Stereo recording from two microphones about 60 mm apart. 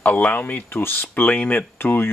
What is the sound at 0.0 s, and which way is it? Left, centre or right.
Speech, left.